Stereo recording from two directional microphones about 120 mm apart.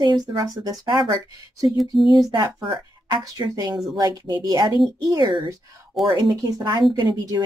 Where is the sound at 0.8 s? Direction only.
40° right (ahead or behind).